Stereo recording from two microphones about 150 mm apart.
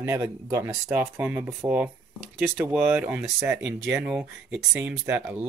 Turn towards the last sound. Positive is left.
turn(degrees=-10)  # may be behind; listen again after turning